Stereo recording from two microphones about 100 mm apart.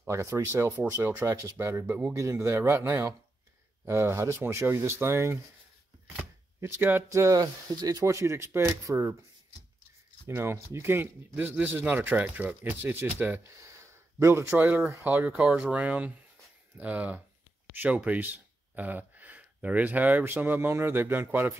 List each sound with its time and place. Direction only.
0.0 s speech: 25° right (ahead or behind)
6.6 s speech: 25° right (ahead or behind)
10.2 s speech: 25° right (ahead or behind)
13.7 s a sound: 30° right (ahead or behind)
14.9 s speech: 20° right (ahead or behind)